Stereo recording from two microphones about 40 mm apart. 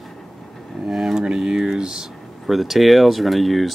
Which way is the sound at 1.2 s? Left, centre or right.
Centre.